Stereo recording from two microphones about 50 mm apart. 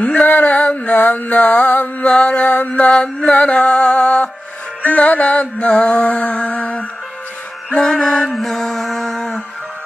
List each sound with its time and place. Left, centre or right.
0.0 s mantra: left
1.7 s mantra: left
2.0 s music: left
7.8 s mantra: centre